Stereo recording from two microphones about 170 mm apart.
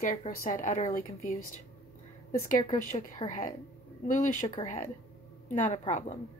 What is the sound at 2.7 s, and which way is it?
A woman's voice, 50° left (ahead or behind).